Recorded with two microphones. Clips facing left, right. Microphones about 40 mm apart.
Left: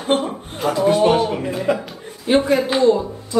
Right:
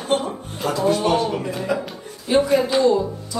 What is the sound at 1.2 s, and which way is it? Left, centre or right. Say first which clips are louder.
Speech: left 2 dB; centre.